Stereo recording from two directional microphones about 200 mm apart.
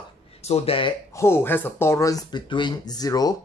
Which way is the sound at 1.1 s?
15° left (ahead or behind).